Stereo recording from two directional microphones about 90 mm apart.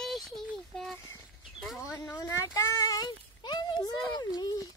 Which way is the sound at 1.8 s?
35° left (ahead or behind).